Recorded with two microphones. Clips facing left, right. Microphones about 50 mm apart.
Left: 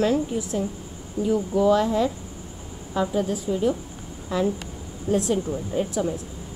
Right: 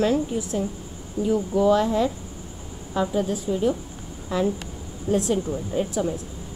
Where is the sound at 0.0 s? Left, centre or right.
Centre.